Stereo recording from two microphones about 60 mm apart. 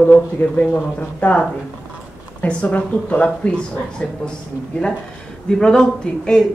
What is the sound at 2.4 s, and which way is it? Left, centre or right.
Speech, left.